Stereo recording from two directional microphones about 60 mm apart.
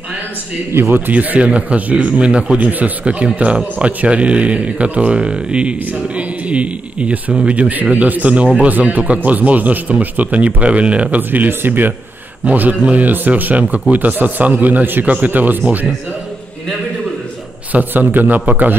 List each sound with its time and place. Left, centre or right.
0.7 s a man's voice: right
1.1 s a man's voice: right
17.7 s a man's voice: right